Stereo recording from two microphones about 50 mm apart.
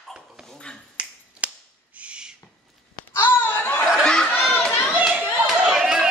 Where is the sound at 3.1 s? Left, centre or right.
Left.